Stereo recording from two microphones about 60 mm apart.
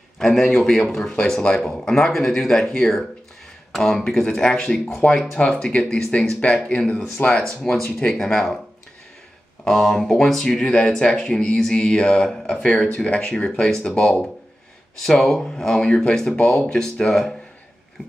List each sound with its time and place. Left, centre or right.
0.2 s a man's voice: centre
9.7 s a man's voice: centre